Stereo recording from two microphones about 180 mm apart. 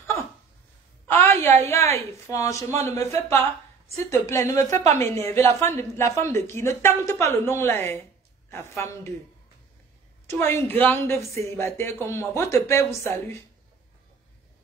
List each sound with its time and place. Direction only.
1.0 s a sound: 10° left (ahead or behind)
1.4 s speech: 15° left (ahead or behind)
10.2 s a woman's voice: 15° left (ahead or behind)